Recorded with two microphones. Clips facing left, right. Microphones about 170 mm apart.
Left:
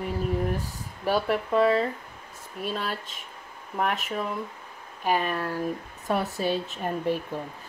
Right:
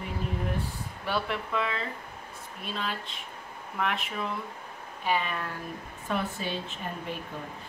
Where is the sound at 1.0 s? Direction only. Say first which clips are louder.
Left 7 dB; 40° left (ahead or behind).